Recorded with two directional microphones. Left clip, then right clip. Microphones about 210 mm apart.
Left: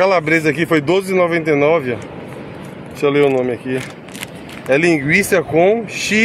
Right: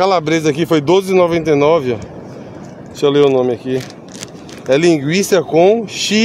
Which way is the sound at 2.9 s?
40° right (ahead or behind).